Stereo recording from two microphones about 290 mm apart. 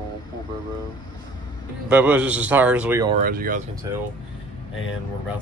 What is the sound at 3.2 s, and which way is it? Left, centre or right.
Speech, right.